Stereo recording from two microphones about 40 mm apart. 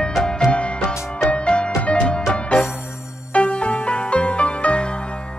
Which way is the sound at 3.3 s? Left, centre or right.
Left.